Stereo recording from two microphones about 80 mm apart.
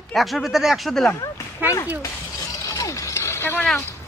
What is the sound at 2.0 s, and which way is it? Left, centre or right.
Shatter, left.